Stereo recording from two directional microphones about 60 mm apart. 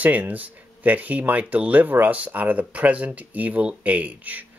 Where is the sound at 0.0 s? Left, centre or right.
Right.